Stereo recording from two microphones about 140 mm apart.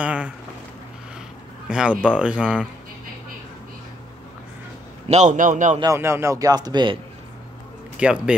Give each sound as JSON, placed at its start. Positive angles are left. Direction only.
{"t": 0.0, "sound": "speech", "side_deg": -10}
{"t": 1.7, "sound": "speech", "side_deg": -5}
{"t": 5.0, "sound": "a man's voice", "side_deg": -55}
{"t": 5.9, "sound": "speech", "side_deg": -15}
{"t": 8.0, "sound": "speech", "side_deg": -5}